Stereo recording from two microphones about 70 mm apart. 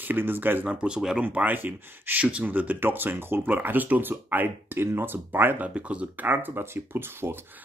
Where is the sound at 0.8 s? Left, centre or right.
Centre.